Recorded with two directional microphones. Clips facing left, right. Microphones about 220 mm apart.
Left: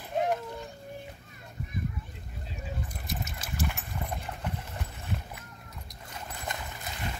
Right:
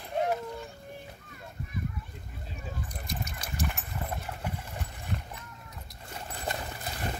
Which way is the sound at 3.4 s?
Centre (ahead or behind).